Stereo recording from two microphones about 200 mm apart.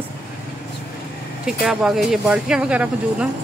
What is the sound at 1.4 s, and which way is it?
Speech, 5° right (ahead or behind).